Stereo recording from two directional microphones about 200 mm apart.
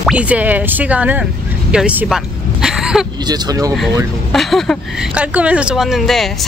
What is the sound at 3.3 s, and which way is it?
Speech, 20° right (ahead or behind).